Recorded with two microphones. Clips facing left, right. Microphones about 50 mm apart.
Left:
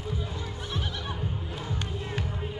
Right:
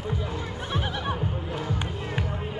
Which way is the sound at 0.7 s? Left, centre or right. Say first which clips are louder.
Right 7 dB; right.